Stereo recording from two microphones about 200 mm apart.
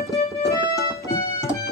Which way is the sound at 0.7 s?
15° left (ahead or behind).